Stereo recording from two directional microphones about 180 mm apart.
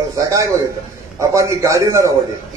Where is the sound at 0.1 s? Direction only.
20° right (ahead or behind).